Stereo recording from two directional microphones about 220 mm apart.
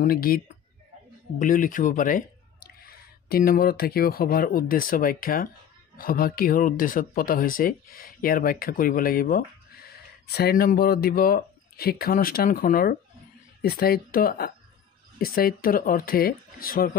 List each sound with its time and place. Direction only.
0.0 s speech: 40° left (ahead or behind)
1.4 s speech: 40° left (ahead or behind)